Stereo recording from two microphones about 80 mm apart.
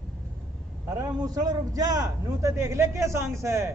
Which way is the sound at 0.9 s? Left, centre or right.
Right.